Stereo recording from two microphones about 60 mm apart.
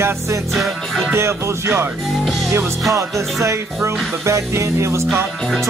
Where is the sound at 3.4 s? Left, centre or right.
Right.